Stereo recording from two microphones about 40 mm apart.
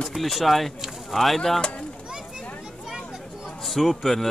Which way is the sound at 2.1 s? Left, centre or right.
Centre.